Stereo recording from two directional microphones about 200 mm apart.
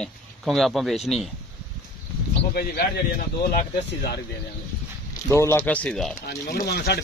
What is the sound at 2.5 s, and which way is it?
Speech, 50° left (ahead or behind).